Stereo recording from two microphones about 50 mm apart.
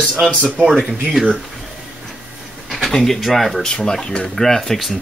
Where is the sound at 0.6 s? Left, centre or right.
Centre.